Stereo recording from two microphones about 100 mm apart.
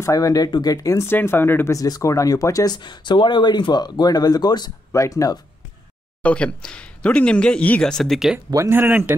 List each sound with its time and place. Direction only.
0.0 s speech: 35° left (ahead or behind)
4.9 s speech: 35° left (ahead or behind)
6.2 s speech: 10° left (ahead or behind)
8.6 s speech: 20° right (ahead or behind)